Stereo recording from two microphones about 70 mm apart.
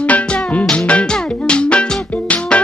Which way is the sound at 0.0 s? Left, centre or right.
Centre.